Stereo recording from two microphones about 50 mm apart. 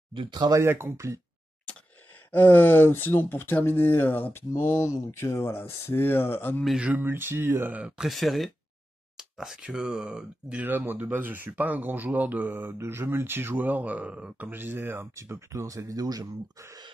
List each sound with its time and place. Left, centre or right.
0.6 s speech: right
2.3 s speech: left
7.0 s speech: right
8.1 s speech: centre
10.6 s speech: right
12.7 s speech: right
14.5 s speech: right
15.2 s speech: right